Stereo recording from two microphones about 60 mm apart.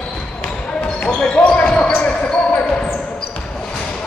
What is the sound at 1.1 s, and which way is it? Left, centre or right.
Basketball bounce, centre.